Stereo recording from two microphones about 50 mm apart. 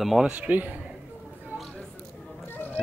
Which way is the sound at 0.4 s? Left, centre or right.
Right.